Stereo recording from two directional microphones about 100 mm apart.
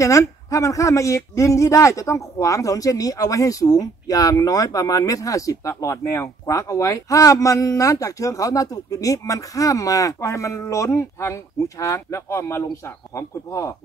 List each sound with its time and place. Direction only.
0.0 s speech: 30° left (ahead or behind)